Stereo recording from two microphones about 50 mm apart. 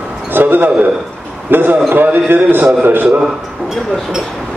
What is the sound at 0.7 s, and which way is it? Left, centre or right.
Speech, right.